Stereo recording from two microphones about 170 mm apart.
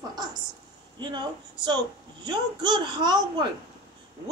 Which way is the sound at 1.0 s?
25° right (ahead or behind).